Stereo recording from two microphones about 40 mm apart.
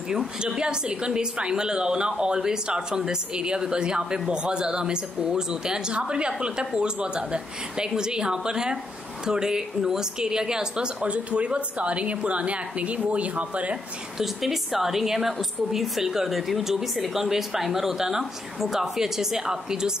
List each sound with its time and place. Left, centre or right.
0.6 s a woman's voice: right
11.0 s a woman's voice: right
14.1 s a woman's voice: centre